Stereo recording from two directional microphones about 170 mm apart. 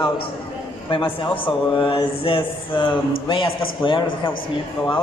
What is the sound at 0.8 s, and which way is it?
A man's voice, 30° left (ahead or behind).